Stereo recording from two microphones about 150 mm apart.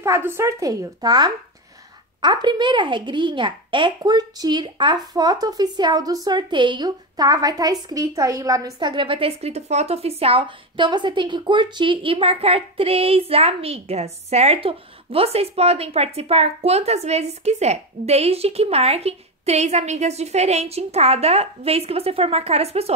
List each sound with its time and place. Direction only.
0.0 s a woman's voice: 15° right (ahead or behind); by 22.9 s 45° right (ahead or behind)